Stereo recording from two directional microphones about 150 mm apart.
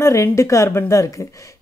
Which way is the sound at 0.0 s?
20° left (ahead or behind).